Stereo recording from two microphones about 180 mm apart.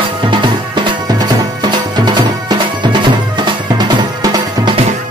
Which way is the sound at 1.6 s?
25° right (ahead or behind).